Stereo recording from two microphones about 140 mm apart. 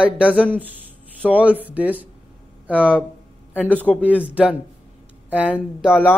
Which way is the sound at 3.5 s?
10° left (ahead or behind).